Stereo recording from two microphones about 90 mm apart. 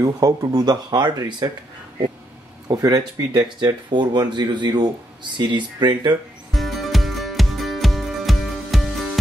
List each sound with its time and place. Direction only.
0.0 s speech: 45° right (ahead or behind)
2.7 s speech: 45° right (ahead or behind)
6.5 s music: centre (ahead or behind)